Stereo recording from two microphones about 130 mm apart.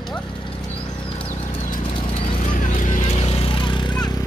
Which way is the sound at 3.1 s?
50° left (ahead or behind).